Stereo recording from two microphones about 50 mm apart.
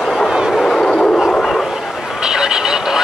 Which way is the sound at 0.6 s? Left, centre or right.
Centre.